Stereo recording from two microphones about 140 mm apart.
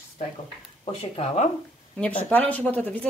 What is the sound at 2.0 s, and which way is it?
Speech, 10° left (ahead or behind).